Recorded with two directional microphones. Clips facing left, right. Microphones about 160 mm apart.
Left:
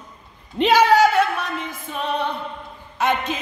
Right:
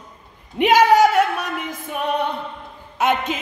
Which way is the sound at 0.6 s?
15° right (ahead or behind).